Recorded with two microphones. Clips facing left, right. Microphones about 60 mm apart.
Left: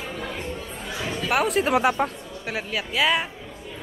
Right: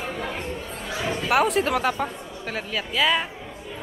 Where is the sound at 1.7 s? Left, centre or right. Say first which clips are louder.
Left 3 dB; centre.